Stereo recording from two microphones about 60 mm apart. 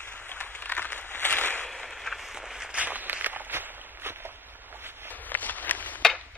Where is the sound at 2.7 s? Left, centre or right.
Right.